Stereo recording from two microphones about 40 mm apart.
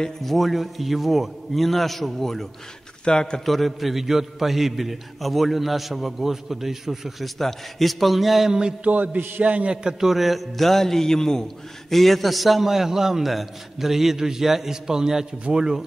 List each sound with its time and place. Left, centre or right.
0.2 s a man's voice: centre
3.1 s a man's voice: centre
3.4 s a man's voice: centre
7.3 s a man's voice: centre
8.5 s mantra: centre
8.8 s music: right
9.8 s a man's voice: centre
11.9 s a man's voice: centre